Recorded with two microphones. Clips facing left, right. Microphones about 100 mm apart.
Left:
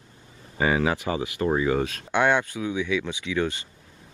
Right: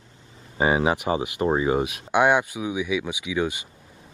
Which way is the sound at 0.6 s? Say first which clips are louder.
Right 2 dB; 25° right (ahead or behind).